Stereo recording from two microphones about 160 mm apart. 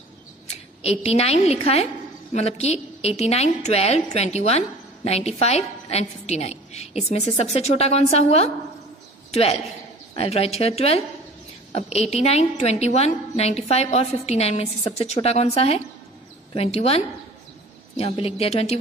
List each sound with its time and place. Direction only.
0.8 s a woman's voice: 40° left (ahead or behind)